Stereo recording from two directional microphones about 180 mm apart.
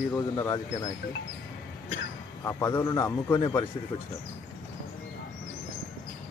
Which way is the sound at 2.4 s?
15° left (ahead or behind).